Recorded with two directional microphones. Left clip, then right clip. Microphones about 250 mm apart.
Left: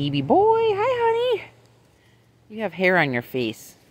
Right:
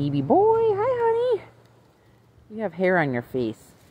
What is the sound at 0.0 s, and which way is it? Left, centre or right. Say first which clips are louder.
Speech: left 1 dB; centre.